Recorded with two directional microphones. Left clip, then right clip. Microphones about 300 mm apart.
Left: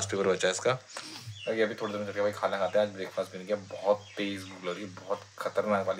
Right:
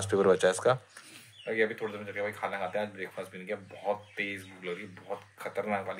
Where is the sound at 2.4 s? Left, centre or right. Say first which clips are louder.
Left 7 dB; centre.